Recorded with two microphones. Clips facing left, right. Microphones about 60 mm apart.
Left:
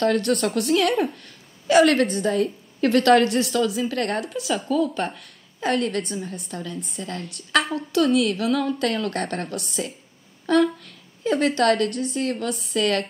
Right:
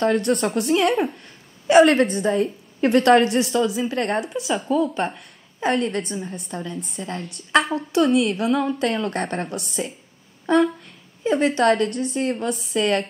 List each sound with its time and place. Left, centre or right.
0.0 s a woman's voice: right
0.8 s a woman's voice: centre
1.7 s a woman's voice: right
6.1 s a woman's voice: centre
6.5 s a woman's voice: right